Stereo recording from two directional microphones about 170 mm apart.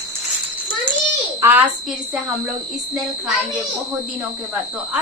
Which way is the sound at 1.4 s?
15° right (ahead or behind).